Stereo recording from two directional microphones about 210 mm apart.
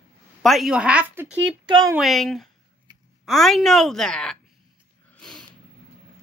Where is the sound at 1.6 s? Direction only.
20° right (ahead or behind).